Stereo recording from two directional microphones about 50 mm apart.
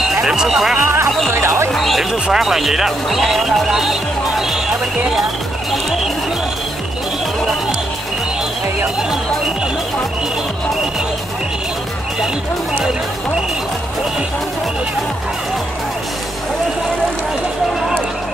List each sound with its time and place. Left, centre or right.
0.2 s speech: centre
1.3 s speech: right
1.7 s speech: centre